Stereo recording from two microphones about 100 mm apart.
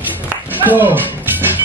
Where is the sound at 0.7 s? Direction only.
20° right (ahead or behind).